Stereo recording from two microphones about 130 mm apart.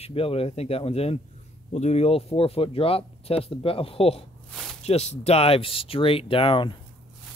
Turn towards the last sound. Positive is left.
turn(degrees=40)  # may be behind; listen again after turning